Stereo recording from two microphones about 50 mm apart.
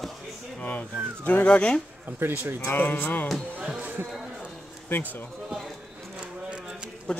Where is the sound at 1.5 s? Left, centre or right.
Left.